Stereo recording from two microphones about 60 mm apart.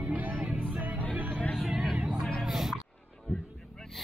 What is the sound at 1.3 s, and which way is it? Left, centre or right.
Music, left.